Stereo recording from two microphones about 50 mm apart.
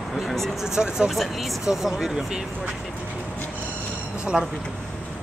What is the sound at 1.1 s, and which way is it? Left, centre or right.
Speech, centre.